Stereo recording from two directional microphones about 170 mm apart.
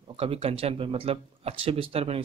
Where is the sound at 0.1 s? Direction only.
35° right (ahead or behind).